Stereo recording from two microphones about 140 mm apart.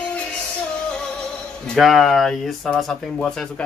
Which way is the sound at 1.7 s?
Centre (ahead or behind).